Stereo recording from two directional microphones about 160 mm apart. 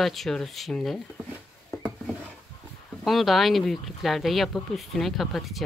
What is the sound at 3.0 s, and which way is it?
Speech, centre (ahead or behind).